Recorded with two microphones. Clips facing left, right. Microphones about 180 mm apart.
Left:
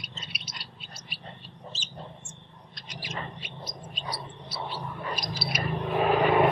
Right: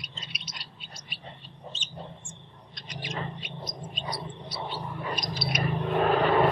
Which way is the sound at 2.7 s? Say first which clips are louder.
Right 2 dB; 5° left (ahead or behind).